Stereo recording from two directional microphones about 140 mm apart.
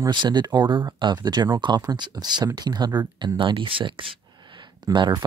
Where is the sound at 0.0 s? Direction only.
35° right (ahead or behind).